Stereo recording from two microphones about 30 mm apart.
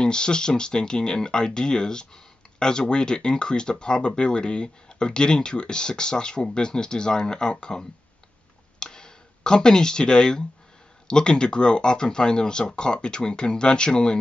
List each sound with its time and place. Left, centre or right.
0.0 s speech: left
8.7 s a sound: left
11.1 s speech: left